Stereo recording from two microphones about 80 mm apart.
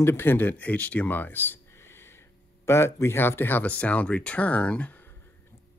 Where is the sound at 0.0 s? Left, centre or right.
Left.